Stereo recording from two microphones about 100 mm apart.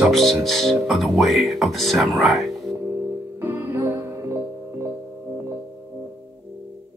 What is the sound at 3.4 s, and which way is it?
Music, 25° right (ahead or behind).